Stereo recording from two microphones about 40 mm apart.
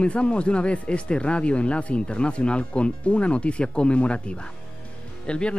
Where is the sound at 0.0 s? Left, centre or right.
Left.